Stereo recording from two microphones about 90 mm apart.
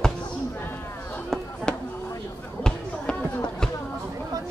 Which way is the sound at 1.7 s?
10° left (ahead or behind).